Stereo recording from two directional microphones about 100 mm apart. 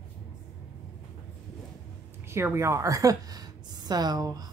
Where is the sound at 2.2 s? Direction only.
25° right (ahead or behind).